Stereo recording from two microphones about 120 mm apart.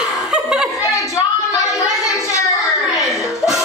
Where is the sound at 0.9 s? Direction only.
25° left (ahead or behind).